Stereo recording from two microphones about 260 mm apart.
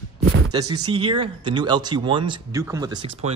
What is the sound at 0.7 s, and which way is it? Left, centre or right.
Speech, right.